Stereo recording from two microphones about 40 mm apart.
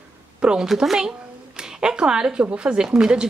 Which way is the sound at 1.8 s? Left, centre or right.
Right.